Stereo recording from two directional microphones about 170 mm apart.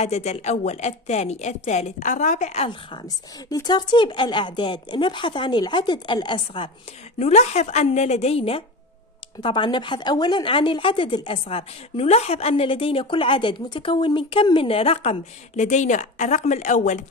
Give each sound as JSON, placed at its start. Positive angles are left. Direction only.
{"t": 0.0, "sound": "a woman's voice", "side_deg": 40}
{"t": 7.2, "sound": "speech", "side_deg": 40}